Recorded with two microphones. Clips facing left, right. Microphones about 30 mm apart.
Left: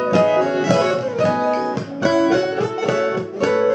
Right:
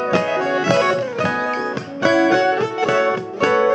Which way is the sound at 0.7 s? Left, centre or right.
Centre.